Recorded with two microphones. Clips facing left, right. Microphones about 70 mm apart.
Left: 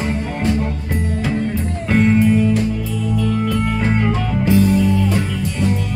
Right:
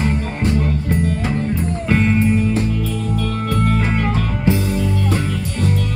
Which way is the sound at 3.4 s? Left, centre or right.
Right.